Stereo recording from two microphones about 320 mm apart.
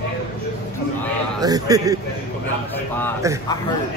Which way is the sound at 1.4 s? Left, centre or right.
Centre.